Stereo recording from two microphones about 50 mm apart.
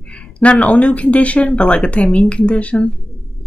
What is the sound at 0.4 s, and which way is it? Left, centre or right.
Speech, left.